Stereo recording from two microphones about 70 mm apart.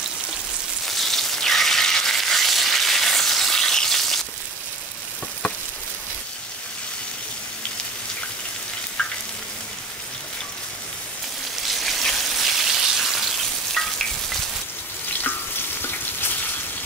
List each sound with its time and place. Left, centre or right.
0.8 s a sound: centre
11.8 s raindrop: centre
13.7 s frying: centre
15.2 s frying: left